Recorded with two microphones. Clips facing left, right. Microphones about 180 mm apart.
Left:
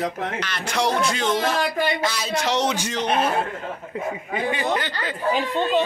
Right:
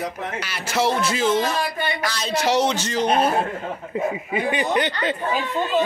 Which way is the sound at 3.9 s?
10° right (ahead or behind).